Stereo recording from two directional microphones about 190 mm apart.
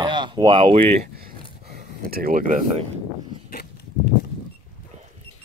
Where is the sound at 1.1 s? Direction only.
55° right (ahead or behind).